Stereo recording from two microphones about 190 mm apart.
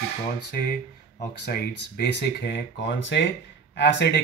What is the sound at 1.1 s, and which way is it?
Speech, 60° left (ahead or behind).